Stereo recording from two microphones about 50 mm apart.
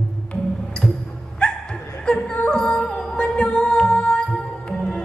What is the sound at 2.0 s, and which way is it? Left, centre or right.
Music, left.